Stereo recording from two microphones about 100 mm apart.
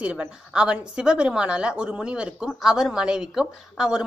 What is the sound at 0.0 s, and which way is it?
A woman's voice, 10° right (ahead or behind).